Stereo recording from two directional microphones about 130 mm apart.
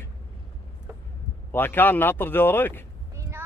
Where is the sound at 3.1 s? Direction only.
20° right (ahead or behind).